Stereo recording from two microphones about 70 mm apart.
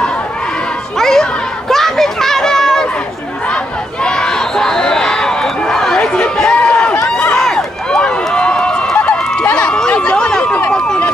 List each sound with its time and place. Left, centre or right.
0.9 s children playing: centre
1.7 s a sound: centre
3.4 s crowd: centre
7.3 s run: centre